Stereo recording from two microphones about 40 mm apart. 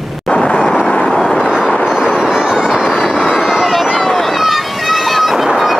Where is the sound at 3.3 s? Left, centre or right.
Centre.